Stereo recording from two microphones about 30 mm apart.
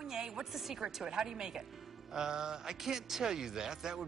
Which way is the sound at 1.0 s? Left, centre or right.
Right.